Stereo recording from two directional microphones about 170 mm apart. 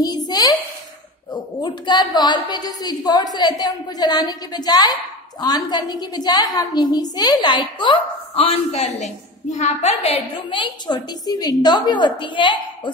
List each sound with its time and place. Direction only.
0.3 s a child's voice: 25° left (ahead or behind)